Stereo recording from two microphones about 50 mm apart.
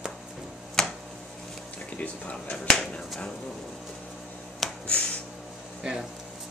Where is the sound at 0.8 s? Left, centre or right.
Centre.